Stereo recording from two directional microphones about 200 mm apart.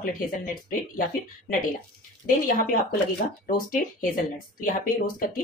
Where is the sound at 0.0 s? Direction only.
45° left (ahead or behind).